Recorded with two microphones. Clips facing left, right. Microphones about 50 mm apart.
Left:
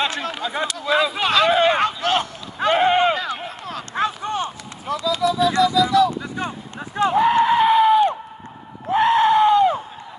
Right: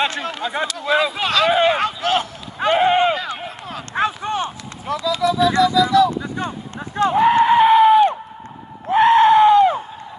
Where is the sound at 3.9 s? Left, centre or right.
Right.